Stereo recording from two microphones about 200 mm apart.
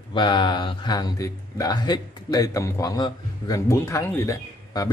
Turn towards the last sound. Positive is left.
turn(degrees=15)  # may be behind; listen again after turning